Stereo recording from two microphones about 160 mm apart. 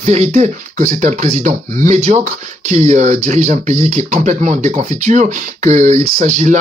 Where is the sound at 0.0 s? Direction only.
45° right (ahead or behind).